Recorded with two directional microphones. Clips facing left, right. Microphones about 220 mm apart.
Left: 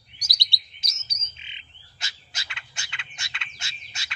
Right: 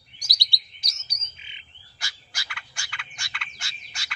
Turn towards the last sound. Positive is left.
turn(degrees=25)  # may be behind; listen again after turning